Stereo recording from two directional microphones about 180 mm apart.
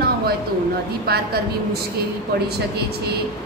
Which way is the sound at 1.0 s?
60° right (ahead or behind).